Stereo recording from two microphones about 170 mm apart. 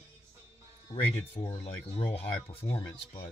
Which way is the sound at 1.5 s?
40° left (ahead or behind).